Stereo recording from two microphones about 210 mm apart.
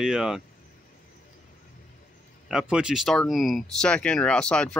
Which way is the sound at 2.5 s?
5° right (ahead or behind).